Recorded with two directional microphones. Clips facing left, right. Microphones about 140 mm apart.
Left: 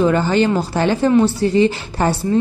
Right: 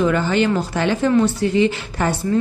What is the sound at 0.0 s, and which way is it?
A woman's voice, 35° left (ahead or behind).